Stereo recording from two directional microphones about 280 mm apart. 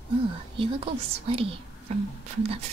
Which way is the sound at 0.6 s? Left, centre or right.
Centre.